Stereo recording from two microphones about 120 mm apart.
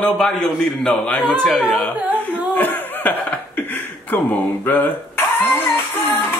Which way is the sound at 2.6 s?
15° left (ahead or behind).